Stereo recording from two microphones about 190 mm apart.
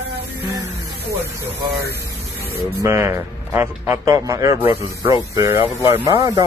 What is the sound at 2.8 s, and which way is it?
Speech, 15° right (ahead or behind).